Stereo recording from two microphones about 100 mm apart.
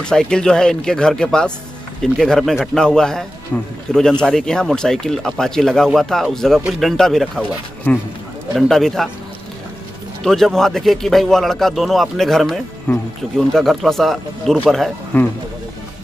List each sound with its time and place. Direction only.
0.0 s a man's voice: 5° left (ahead or behind)
8.5 s a man's voice: 5° left (ahead or behind)
10.2 s a man's voice: 5° left (ahead or behind)
15.1 s speech: 20° left (ahead or behind)